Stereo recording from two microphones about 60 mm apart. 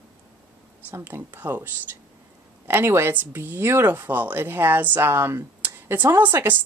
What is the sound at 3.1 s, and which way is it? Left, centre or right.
Speech, right.